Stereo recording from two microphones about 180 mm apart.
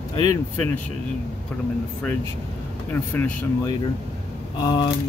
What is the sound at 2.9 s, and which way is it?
Speech, 10° left (ahead or behind).